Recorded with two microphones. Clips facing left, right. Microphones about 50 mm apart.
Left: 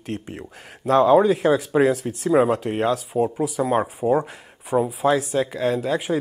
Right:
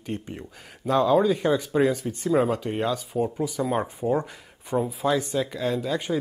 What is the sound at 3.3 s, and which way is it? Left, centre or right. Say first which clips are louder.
Speech: left 4 dB; centre.